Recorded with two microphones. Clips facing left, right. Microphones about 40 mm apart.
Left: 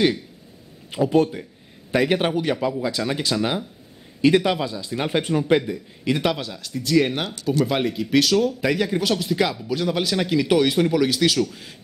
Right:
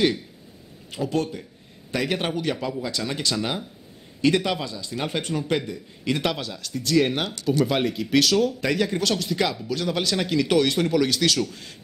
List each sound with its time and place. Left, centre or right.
0.9 s speech: centre